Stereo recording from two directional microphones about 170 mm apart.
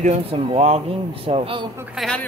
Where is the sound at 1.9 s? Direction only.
5° left (ahead or behind).